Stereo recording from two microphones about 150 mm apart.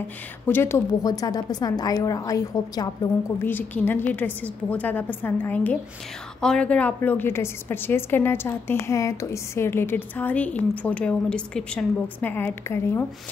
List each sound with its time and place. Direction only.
0.5 s a woman's voice: 15° left (ahead or behind)
3.3 s a woman's voice: 15° left (ahead or behind)